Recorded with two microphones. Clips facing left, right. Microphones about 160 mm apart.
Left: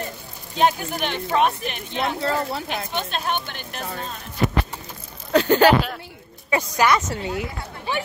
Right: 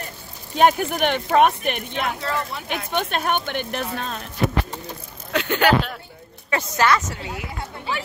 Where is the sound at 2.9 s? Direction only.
55° right (ahead or behind).